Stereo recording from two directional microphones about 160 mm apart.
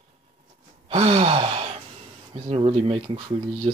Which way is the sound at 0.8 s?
35° right (ahead or behind).